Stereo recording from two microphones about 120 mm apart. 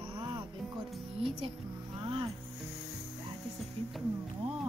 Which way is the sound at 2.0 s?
50° right (ahead or behind).